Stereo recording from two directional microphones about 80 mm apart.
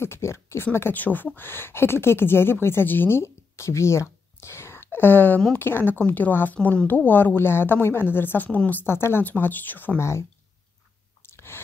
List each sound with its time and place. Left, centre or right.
0.0 s speech: left
9.9 s a woman's voice: left
11.2 s chewing: left